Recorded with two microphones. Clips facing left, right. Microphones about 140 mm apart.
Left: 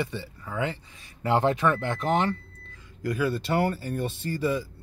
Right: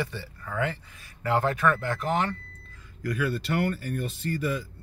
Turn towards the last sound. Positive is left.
turn(degrees=25)  # may be behind; listen again after turning